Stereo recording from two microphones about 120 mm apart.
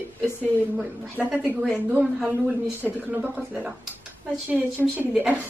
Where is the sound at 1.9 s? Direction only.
15° right (ahead or behind).